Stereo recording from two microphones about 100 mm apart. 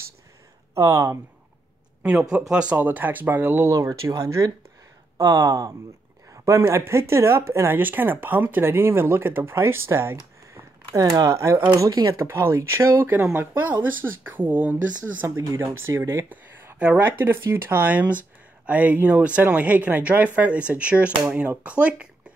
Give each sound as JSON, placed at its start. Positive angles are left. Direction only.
{"t": 0.7, "sound": "speech", "side_deg": -30}
{"t": 2.5, "sound": "speech", "side_deg": -10}
{"t": 3.7, "sound": "speech", "side_deg": -30}
{"t": 10.5, "sound": "a sound", "side_deg": -30}
{"t": 11.7, "sound": "speech", "side_deg": -35}
{"t": 15.3, "sound": "speech", "side_deg": -30}
{"t": 16.7, "sound": "speech", "side_deg": -10}
{"t": 17.5, "sound": "speech", "side_deg": -25}